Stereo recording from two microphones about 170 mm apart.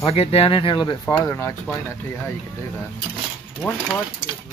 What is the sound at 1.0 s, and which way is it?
Speech, 15° left (ahead or behind).